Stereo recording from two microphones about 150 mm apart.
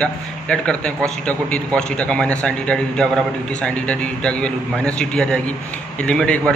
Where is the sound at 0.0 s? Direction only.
10° left (ahead or behind).